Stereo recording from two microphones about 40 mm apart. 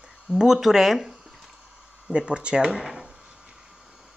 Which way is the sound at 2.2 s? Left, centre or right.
Right.